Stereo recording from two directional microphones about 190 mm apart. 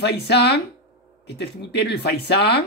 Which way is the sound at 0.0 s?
60° left (ahead or behind).